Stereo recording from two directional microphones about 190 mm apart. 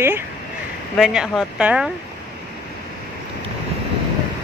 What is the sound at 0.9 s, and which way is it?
Speech, centre (ahead or behind).